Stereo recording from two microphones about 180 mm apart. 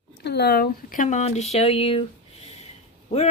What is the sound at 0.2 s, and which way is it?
Speech, 65° left (ahead or behind).